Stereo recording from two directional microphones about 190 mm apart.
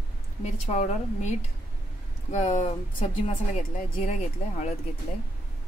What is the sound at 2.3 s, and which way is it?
Speech, 40° left (ahead or behind).